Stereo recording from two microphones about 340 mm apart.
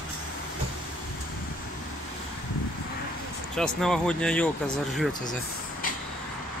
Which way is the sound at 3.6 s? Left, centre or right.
Centre.